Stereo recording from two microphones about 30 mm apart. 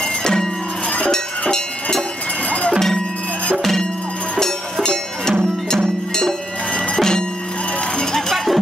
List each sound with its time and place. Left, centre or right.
0.2 s music: left
1.5 s music: left
4.4 s music: centre
7.0 s music: left